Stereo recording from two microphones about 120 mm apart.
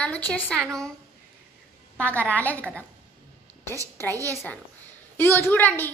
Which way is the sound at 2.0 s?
15° left (ahead or behind).